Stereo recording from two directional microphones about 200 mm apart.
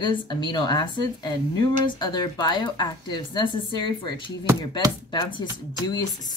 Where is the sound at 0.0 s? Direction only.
25° left (ahead or behind).